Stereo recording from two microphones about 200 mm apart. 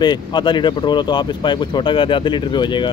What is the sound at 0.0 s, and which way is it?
Speech, 20° left (ahead or behind).